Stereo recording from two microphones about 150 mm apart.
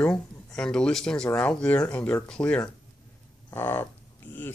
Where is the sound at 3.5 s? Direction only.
15° left (ahead or behind).